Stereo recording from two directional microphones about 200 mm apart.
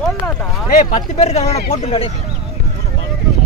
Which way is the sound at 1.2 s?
35° left (ahead or behind).